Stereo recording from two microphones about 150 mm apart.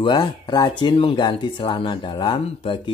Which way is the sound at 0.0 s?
30° left (ahead or behind).